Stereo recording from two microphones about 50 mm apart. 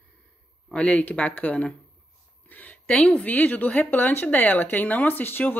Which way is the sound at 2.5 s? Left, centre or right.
Left.